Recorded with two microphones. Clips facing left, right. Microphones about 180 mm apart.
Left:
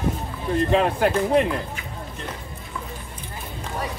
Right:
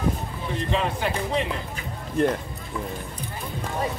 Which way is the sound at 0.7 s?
55° left (ahead or behind).